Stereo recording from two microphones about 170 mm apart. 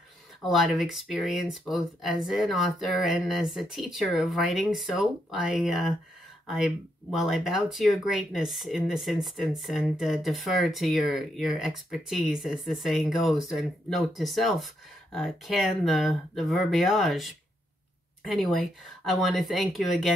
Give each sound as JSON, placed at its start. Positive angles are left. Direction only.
{"t": 0.4, "sound": "speech", "side_deg": 0}